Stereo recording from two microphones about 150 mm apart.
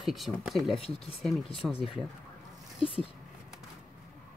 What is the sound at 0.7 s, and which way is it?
Speech, 40° left (ahead or behind).